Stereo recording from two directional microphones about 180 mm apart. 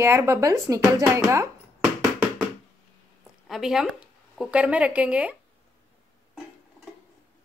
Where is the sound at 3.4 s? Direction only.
Centre (ahead or behind).